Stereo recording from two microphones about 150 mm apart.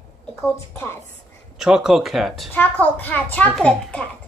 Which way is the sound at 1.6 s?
5° right (ahead or behind).